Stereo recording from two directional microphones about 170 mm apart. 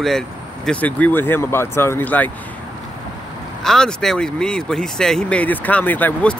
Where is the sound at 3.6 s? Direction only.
5° left (ahead or behind).